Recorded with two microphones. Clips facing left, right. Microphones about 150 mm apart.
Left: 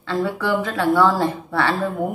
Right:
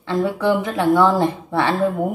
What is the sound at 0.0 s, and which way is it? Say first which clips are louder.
A woman's voice: right 3 dB; 20° right (ahead or behind).